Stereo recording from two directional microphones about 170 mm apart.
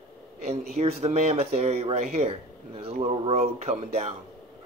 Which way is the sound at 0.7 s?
35° right (ahead or behind).